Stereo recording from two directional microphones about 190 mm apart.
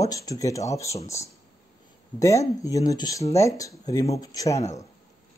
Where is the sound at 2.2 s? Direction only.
15° left (ahead or behind).